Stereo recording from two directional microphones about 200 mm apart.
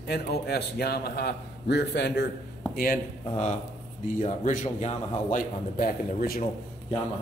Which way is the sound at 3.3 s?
35° left (ahead or behind).